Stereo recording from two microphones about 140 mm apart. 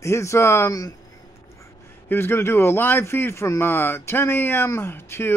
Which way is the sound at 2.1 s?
15° left (ahead or behind).